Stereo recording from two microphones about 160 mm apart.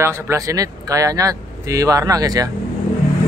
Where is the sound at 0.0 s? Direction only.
15° right (ahead or behind).